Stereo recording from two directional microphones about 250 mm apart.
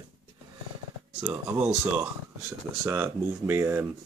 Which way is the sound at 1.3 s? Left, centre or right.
Centre.